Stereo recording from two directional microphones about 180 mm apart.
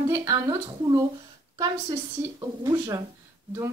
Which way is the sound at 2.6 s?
20° right (ahead or behind).